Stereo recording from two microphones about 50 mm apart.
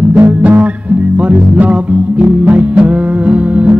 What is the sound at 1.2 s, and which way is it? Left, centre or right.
Music, right.